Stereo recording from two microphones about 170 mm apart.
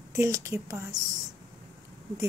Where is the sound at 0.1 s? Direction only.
15° right (ahead or behind).